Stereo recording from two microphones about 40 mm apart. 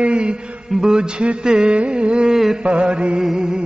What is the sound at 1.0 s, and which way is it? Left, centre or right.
Mantra, right.